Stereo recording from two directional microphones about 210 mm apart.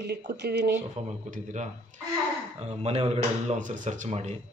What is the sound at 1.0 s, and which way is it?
Speech, 35° right (ahead or behind).